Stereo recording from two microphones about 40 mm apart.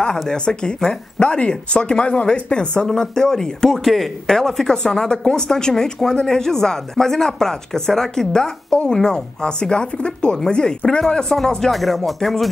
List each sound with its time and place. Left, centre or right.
0.3 s speech: centre
3.8 s music: centre
4.3 s speech: centre
11.7 s music: centre